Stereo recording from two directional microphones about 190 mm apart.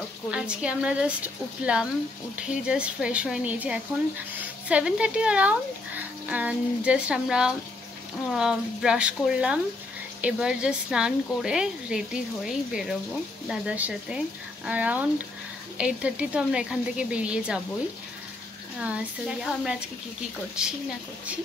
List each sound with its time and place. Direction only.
0.3 s speech: 5° right (ahead or behind)
13.5 s speech: 5° right (ahead or behind)
18.8 s speech: 5° right (ahead or behind)